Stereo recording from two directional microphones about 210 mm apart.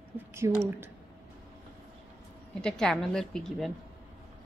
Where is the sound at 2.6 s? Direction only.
5° left (ahead or behind).